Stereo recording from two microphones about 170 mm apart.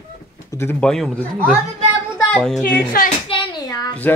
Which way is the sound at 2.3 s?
5° left (ahead or behind).